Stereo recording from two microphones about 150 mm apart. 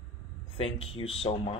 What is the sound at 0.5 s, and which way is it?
Speech, 35° left (ahead or behind).